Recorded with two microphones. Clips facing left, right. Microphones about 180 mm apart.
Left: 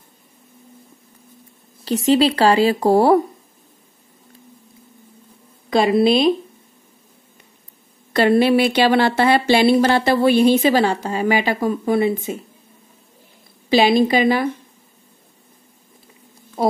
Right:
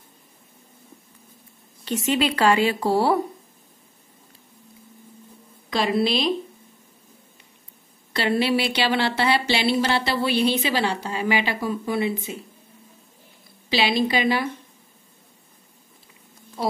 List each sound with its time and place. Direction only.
1.9 s speech: 35° left (ahead or behind)
5.7 s speech: 50° left (ahead or behind)
8.1 s speech: 50° left (ahead or behind)
13.7 s speech: 50° left (ahead or behind)
16.6 s speech: 50° left (ahead or behind)